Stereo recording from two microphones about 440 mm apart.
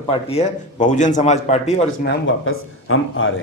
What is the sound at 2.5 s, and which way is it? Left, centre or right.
Speech, left.